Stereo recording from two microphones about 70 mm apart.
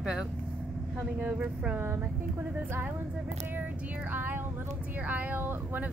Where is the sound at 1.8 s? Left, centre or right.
Right.